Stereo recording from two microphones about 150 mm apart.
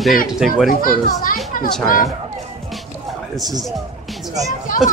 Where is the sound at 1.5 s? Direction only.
70° left (ahead or behind).